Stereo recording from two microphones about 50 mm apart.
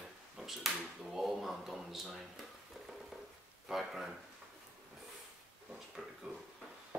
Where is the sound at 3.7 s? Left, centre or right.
Centre.